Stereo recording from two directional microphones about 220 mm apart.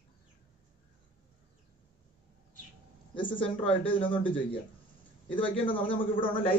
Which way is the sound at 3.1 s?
20° left (ahead or behind).